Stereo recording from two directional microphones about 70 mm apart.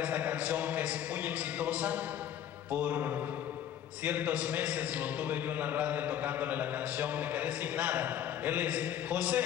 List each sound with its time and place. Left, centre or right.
0.0 s a man's voice: right